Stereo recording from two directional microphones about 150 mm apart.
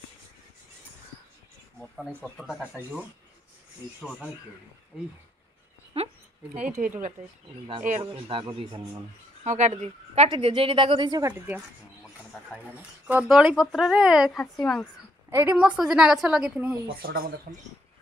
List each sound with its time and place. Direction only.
1.8 s speech: 5° left (ahead or behind)
2.7 s a woman's voice: 10° right (ahead or behind)
5.9 s a sound: 40° right (ahead or behind)
6.7 s speech: 50° right (ahead or behind)
8.0 s speech: 35° right (ahead or behind)
9.4 s speech: 50° right (ahead or behind); by 11.3 s 25° right (ahead or behind)
12.5 s speech: 5° right (ahead or behind)
14.3 s a woman's voice: 15° left (ahead or behind)
15.2 s a woman's voice: 15° right (ahead or behind)
16.8 s speech: 80° right